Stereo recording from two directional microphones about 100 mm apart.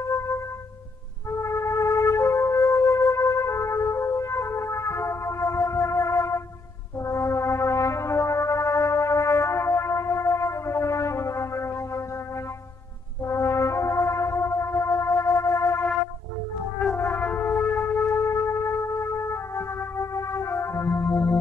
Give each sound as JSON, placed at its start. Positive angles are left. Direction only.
{"t": 1.4, "sound": "music", "side_deg": 30}
{"t": 7.0, "sound": "brass instrument", "side_deg": 30}
{"t": 13.2, "sound": "brass instrument", "side_deg": 30}
{"t": 16.9, "sound": "shofar", "side_deg": 20}